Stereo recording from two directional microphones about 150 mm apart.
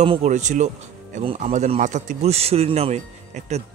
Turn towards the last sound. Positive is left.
turn(degrees=-50)  # may be behind; listen again after turning